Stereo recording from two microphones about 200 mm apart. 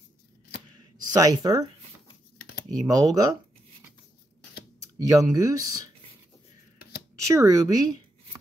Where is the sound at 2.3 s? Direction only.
50° left (ahead or behind).